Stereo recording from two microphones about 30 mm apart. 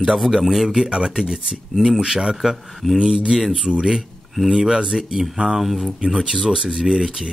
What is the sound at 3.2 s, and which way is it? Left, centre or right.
A man's voice, right.